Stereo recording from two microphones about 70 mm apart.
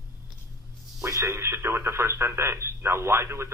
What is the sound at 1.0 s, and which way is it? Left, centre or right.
Speech, right.